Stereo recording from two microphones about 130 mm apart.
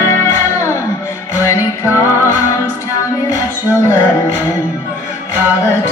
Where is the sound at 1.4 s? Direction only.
25° left (ahead or behind).